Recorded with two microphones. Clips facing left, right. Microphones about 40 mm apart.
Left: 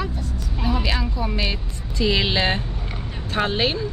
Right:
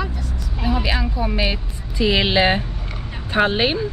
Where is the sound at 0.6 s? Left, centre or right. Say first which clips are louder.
Right 2 dB; centre.